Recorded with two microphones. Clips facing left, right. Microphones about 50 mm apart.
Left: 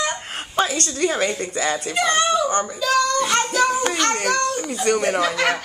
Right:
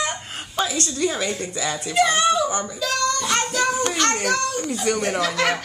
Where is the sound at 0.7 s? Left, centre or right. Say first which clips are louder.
Left 2 dB; left.